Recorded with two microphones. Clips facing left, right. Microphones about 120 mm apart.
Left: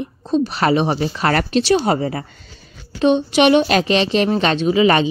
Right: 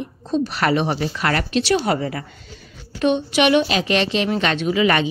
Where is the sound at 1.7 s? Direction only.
25° left (ahead or behind).